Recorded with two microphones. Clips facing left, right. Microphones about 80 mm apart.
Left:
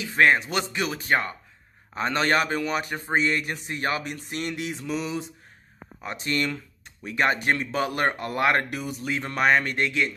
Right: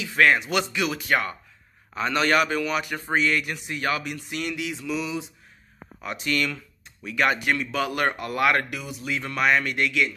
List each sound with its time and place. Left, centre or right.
0.1 s speech: left
6.0 s speech: left